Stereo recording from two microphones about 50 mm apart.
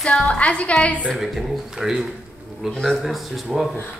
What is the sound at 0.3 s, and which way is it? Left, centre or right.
Speech, left.